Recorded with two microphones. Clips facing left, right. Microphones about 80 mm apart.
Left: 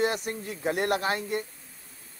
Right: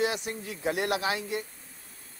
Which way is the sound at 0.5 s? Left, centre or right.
Centre.